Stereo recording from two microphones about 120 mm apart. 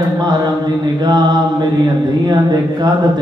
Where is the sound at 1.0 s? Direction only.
35° right (ahead or behind).